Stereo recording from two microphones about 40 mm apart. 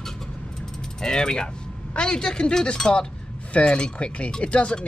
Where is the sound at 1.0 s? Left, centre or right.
Centre.